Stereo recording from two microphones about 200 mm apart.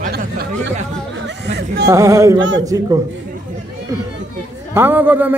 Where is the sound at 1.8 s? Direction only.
15° right (ahead or behind).